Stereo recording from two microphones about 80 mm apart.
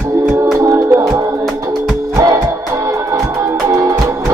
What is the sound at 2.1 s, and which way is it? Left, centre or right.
Music, right.